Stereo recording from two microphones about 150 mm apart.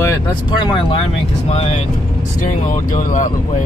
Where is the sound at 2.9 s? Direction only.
60° left (ahead or behind).